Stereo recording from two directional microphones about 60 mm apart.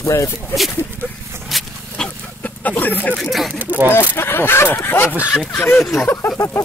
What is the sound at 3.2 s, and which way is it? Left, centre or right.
Speech, centre.